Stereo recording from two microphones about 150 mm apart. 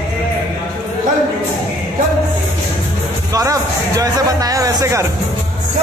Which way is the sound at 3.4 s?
25° right (ahead or behind).